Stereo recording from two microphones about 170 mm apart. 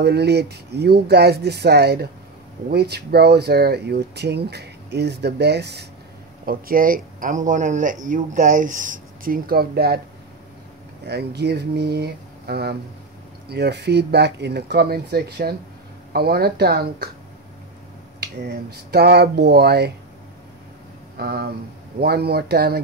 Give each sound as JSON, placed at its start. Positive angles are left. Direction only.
{"t": 0.0, "sound": "speech", "side_deg": -75}
{"t": 6.4, "sound": "speech", "side_deg": -55}
{"t": 11.1, "sound": "speech", "side_deg": -75}
{"t": 13.5, "sound": "speech", "side_deg": -80}
{"t": 18.2, "sound": "speech", "side_deg": -70}
{"t": 21.2, "sound": "speech", "side_deg": -65}